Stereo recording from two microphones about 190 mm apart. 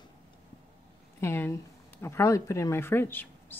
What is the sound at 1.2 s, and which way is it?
Speech, 15° left (ahead or behind).